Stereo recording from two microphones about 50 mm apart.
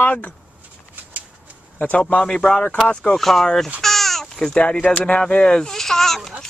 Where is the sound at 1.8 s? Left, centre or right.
Left.